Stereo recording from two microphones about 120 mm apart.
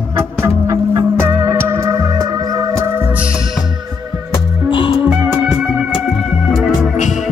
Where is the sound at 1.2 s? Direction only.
20° right (ahead or behind).